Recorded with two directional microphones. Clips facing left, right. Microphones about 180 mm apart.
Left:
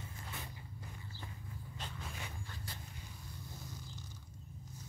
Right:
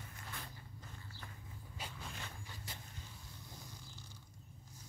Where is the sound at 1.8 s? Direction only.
Centre (ahead or behind).